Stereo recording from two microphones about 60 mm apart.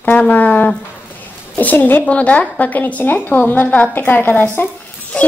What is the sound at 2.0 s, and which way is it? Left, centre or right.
A woman's voice, left.